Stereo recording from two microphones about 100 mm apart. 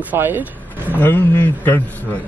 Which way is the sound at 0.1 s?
20° right (ahead or behind).